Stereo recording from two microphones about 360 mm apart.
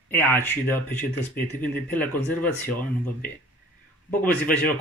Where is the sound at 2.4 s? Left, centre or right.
Left.